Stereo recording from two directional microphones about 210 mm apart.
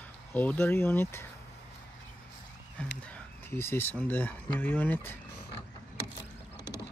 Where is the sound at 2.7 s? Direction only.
5° left (ahead or behind).